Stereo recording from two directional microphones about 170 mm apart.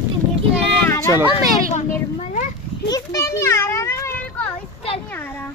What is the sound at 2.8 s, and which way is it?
Children playing, 20° left (ahead or behind).